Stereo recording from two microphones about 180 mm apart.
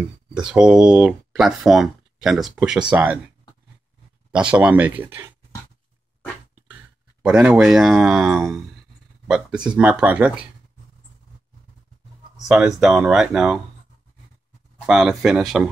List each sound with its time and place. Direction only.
0.3 s speech: 5° right (ahead or behind)
4.3 s speech: 5° right (ahead or behind)
7.2 s speech: 5° right (ahead or behind)
12.4 s speech: 5° right (ahead or behind)
14.9 s speech: 5° right (ahead or behind)